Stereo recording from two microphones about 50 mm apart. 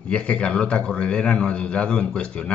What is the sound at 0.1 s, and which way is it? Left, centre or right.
A man's voice, left.